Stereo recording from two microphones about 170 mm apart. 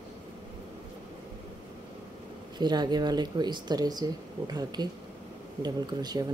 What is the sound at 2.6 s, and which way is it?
Speech, 25° right (ahead or behind).